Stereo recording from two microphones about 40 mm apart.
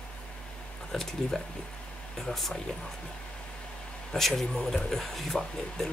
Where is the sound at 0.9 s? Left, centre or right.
Centre.